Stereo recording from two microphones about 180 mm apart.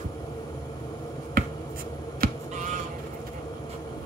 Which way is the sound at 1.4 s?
55° right (ahead or behind).